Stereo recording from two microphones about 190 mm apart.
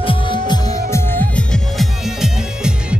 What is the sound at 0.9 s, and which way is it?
Music, 15° left (ahead or behind).